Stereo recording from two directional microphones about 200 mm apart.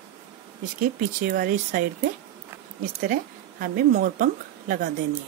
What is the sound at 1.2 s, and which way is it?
Speech, 45° right (ahead or behind).